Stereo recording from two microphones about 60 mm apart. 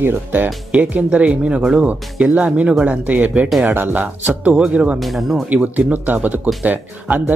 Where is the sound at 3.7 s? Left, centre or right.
Right.